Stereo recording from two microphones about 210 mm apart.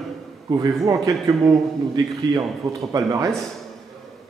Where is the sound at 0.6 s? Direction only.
15° right (ahead or behind).